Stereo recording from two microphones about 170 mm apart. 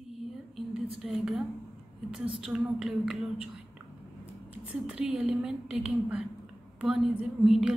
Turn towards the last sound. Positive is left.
turn(degrees=-5)  # may be behind; listen again after turning